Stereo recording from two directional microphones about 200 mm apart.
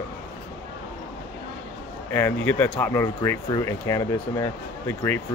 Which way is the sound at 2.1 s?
10° left (ahead or behind).